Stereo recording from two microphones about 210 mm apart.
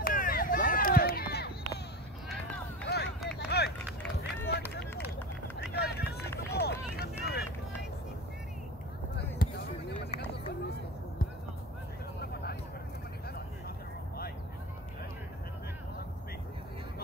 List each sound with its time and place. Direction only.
0.0 s run: 40° left (ahead or behind)
2.2 s run: 5° left (ahead or behind)
3.3 s run: 55° left (ahead or behind)
9.1 s basketball bounce: 50° left (ahead or behind)
12.2 s vehicle: 50° left (ahead or behind)